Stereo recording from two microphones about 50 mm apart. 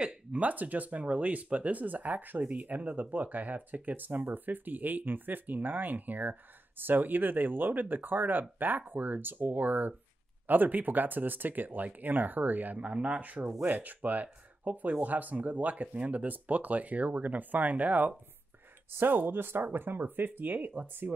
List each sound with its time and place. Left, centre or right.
0.0 s a sound: right
0.4 s speech: right
18.9 s speech: right